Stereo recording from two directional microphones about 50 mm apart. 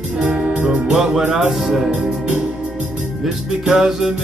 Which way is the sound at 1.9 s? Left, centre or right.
Right.